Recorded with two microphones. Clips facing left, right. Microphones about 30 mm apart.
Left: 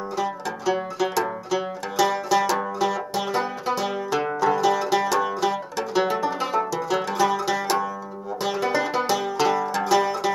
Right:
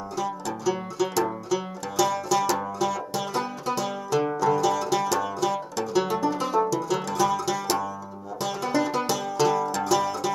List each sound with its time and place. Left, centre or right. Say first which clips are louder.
0.2 s music: left 1 dB; centre